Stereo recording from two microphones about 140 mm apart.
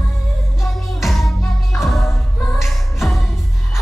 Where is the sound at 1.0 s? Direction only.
Centre (ahead or behind).